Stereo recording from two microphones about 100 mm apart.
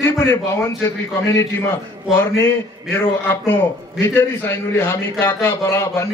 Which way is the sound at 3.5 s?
20° left (ahead or behind).